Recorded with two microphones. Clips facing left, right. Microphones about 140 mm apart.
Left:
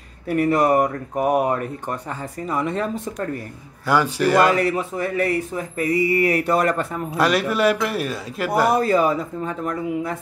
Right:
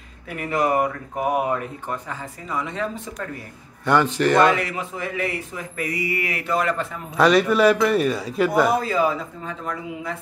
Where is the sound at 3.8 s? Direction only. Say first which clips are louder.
Even; 5° left (ahead or behind).